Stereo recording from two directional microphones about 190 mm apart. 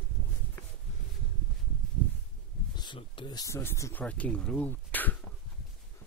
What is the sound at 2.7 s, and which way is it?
Speech, 25° left (ahead or behind).